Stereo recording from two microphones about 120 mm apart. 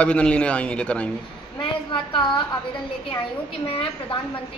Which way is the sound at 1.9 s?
45° left (ahead or behind).